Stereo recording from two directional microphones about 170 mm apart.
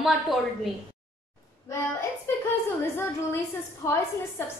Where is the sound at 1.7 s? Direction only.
15° left (ahead or behind).